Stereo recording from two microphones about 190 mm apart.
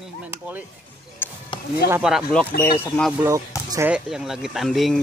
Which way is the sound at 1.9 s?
5° right (ahead or behind).